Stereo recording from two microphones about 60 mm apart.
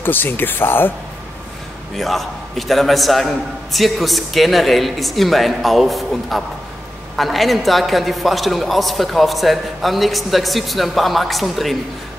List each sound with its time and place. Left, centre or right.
0.0 s speech: left
2.0 s a woman's voice: centre